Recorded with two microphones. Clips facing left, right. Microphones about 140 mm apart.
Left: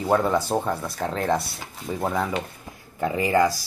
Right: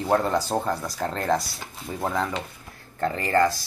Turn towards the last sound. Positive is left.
turn(degrees=10)  # may be behind; listen again after turning